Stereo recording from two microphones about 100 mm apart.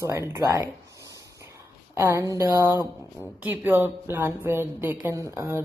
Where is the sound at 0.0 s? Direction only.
25° right (ahead or behind).